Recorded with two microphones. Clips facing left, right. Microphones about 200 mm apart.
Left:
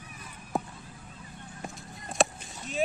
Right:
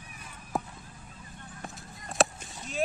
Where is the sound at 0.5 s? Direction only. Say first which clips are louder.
Left 1 dB; centre (ahead or behind).